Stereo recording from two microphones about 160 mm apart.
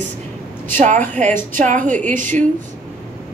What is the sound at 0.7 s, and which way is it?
A woman's voice, 50° right (ahead or behind).